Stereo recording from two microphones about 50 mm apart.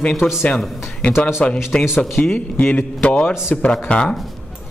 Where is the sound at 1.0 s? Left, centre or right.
Left.